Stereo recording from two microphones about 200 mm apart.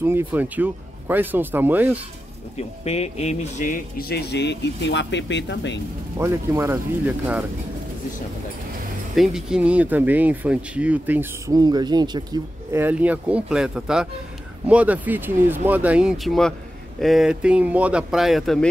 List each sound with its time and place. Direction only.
0.0 s speech: 10° right (ahead or behind)
2.5 s speech: 30° left (ahead or behind); by 5.8 s 60° left (ahead or behind)
6.1 s speech: 15° right (ahead or behind)
9.1 s speech: centre (ahead or behind)